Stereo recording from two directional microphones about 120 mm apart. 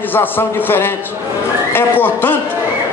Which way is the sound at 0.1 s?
15° left (ahead or behind).